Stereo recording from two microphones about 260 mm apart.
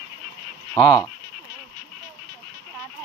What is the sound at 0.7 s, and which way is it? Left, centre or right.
Speech, centre.